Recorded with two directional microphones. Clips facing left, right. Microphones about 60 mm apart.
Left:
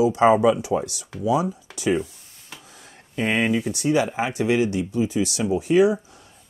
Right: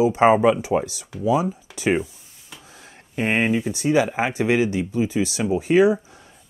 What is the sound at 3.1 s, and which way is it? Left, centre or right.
Speech, right.